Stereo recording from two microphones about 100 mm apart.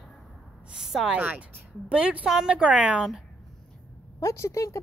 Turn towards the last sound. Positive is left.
turn(degrees=30)  # may be behind; listen again after turning